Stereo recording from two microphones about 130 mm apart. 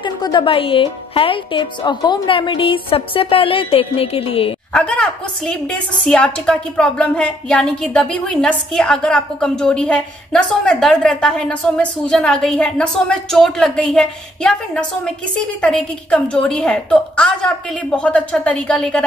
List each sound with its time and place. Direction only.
0.0 s a woman's voice: 35° left (ahead or behind)
4.7 s a woman's voice: 5° left (ahead or behind)